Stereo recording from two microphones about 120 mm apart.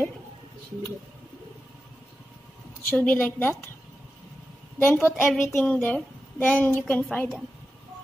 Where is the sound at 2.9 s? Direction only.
10° left (ahead or behind).